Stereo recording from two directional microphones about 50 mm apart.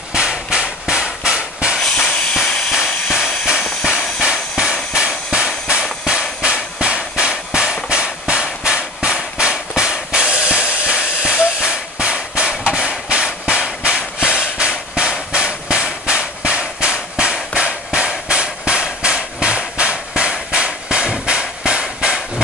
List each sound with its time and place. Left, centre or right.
0.1 s hammer: centre
1.8 s hiss: centre
2.0 s steam: left
2.7 s steam: centre
3.8 s train: centre
4.9 s steam: centre
6.4 s hammer: centre
8.6 s drum: centre
13.1 s hammer: centre